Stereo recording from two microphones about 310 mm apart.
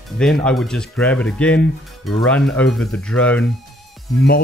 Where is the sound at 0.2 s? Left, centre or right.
Centre.